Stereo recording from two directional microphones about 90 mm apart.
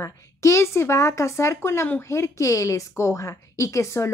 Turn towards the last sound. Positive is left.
turn(degrees=35)  # may be behind; listen again after turning